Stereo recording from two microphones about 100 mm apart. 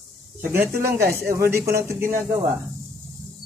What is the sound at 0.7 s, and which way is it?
Speech, 25° right (ahead or behind).